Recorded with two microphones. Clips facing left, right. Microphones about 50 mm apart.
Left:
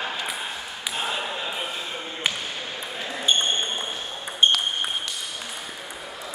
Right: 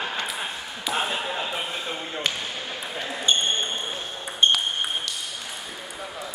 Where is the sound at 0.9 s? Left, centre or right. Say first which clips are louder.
Right 5 dB; centre.